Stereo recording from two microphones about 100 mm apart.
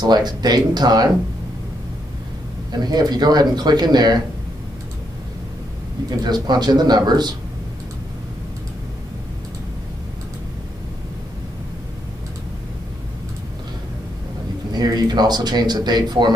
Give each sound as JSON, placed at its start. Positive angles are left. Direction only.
{"t": 0.0, "sound": "speech", "side_deg": -45}
{"t": 2.8, "sound": "speech", "side_deg": -45}
{"t": 6.0, "sound": "speech", "side_deg": -45}
{"t": 14.7, "sound": "speech", "side_deg": -40}